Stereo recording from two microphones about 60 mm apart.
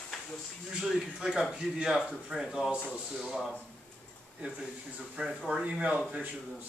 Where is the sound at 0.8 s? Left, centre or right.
Centre.